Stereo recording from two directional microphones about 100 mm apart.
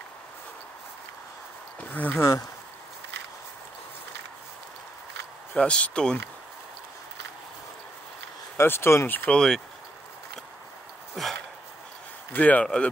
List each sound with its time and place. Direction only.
1.8 s speech: 15° left (ahead or behind)
5.5 s speech: 10° left (ahead or behind)
8.5 s speech: 25° left (ahead or behind)
9.3 s speech: 5° left (ahead or behind)
12.4 s speech: 15° left (ahead or behind)